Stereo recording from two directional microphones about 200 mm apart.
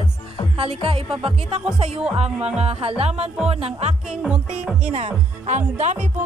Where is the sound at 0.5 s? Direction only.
30° right (ahead or behind).